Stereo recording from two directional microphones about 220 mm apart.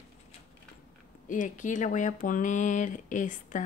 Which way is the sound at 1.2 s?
35° left (ahead or behind).